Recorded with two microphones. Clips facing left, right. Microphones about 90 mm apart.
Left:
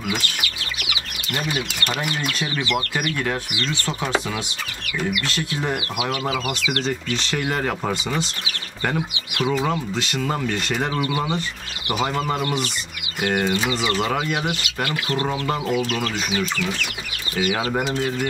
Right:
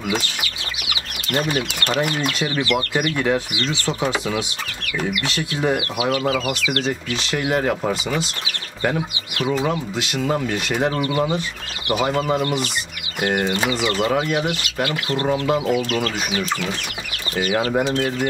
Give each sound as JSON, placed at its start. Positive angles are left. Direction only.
{"t": 1.3, "sound": "speech", "side_deg": -45}
{"t": 2.0, "sound": "speech", "side_deg": -30}
{"t": 6.2, "sound": "speech", "side_deg": 10}
{"t": 7.3, "sound": "speech", "side_deg": -10}
{"t": 9.7, "sound": "speech", "side_deg": -5}
{"t": 11.1, "sound": "speech", "side_deg": 10}
{"t": 12.1, "sound": "speech", "side_deg": 0}
{"t": 13.2, "sound": "speech", "side_deg": -40}
{"t": 15.4, "sound": "speech", "side_deg": -5}